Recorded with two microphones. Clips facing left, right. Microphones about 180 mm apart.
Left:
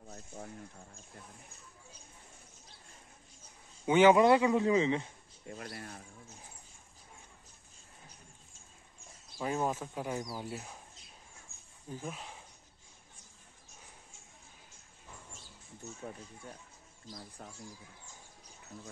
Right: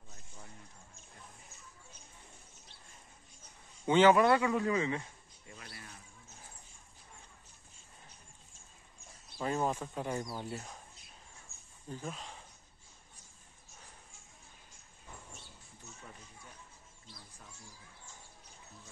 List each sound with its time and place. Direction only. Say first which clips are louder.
0.0 s a sound: left 9 dB; 60° left (ahead or behind)
3.8 s a man's voice: left 2 dB; 10° left (ahead or behind)
5.5 s a sound: left 8 dB; 50° left (ahead or behind)
9.4 s speech: even; 5° left (ahead or behind)
11.9 s speech: even; 10° left (ahead or behind)
17.4 s speech: left 7 dB; 60° left (ahead or behind)